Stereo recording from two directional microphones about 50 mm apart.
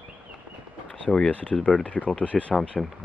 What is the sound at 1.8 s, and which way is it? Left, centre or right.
Speech, left.